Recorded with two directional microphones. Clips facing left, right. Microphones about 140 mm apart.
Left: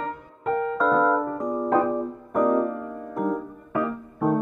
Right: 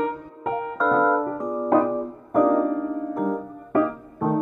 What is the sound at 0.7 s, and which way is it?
Keyboard, centre (ahead or behind).